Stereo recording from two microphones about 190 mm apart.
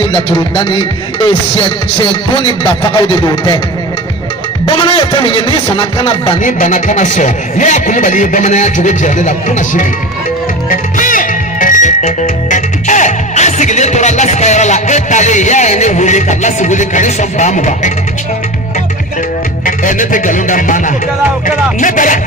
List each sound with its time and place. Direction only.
0.1 s a man's voice: 25° left (ahead or behind)
4.6 s a man's voice: 25° left (ahead or behind)
6.4 s speech: 40° left (ahead or behind)
10.7 s music: 45° left (ahead or behind)
19.6 s music: 45° left (ahead or behind)